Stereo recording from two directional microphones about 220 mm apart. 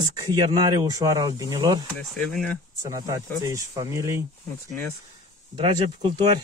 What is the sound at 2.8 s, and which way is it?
Speech, 15° right (ahead or behind).